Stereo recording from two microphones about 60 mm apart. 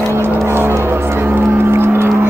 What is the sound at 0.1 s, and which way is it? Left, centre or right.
Vehicle, right.